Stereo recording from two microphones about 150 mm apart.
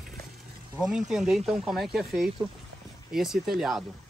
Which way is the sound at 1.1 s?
5° right (ahead or behind).